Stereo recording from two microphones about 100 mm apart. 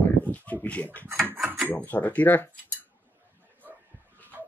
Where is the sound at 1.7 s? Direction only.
15° left (ahead or behind).